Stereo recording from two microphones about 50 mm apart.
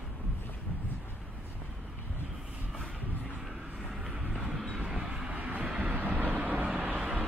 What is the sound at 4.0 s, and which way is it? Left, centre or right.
Vehicle, centre.